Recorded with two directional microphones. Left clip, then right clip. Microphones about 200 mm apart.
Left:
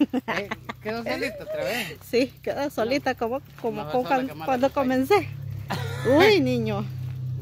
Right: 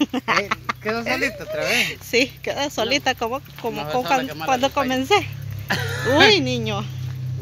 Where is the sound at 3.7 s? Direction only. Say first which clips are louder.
Right 3 dB; 5° right (ahead or behind).